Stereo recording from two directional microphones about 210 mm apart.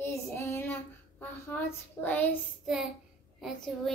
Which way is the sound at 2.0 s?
10° left (ahead or behind).